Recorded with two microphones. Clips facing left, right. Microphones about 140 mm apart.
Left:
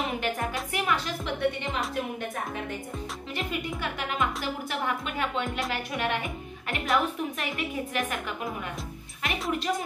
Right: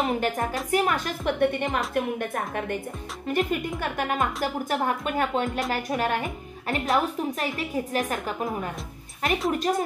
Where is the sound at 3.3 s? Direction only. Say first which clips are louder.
Right 8 dB; 45° right (ahead or behind).